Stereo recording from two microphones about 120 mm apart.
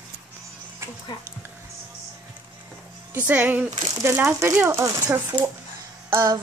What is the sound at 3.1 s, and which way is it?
Speech, 10° right (ahead or behind).